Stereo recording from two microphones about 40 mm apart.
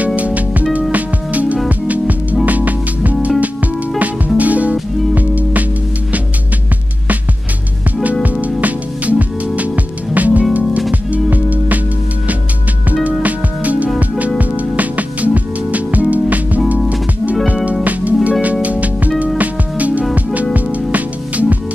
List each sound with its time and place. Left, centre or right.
0.0 s music: right
8.0 s music: right
10.1 s music: right
13.0 s music: right
17.8 s music: right